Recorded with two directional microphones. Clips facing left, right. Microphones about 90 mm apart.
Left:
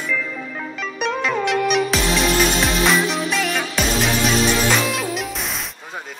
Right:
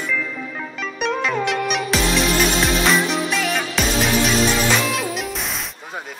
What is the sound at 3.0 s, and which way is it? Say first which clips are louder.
Music: even; centre (ahead or behind).